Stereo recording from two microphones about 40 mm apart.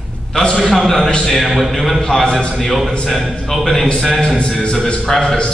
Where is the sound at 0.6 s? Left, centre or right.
Centre.